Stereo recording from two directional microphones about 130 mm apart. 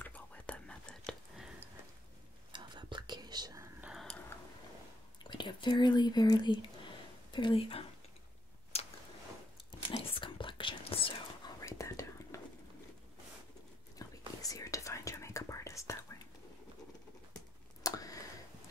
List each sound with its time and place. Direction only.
0.0 s whispering: 10° left (ahead or behind)
2.5 s whispering: 35° right (ahead or behind)
3.8 s a sound: centre (ahead or behind)
5.2 s speech: 35° left (ahead or behind)
8.7 s a sound: 50° left (ahead or behind)
9.7 s whispering: 40° left (ahead or behind)
11.6 s whispering: 25° left (ahead or behind)
13.9 s whispering: 25° left (ahead or behind)
17.8 s a sound: 25° left (ahead or behind)